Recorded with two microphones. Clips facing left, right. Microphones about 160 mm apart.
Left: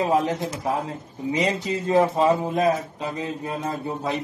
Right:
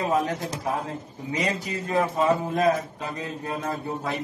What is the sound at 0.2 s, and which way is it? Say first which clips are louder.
Speech: left 2 dB; 20° left (ahead or behind).